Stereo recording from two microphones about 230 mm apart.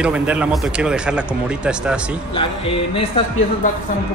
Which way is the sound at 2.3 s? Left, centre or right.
Left.